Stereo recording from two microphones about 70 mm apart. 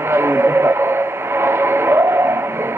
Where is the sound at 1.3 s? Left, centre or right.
Right.